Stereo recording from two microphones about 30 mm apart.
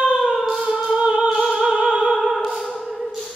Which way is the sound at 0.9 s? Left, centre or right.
Right.